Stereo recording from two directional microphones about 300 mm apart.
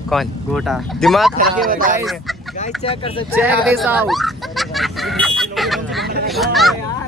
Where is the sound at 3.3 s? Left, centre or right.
Centre.